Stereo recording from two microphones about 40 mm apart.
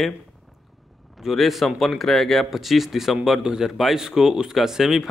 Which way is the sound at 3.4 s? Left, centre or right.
Right.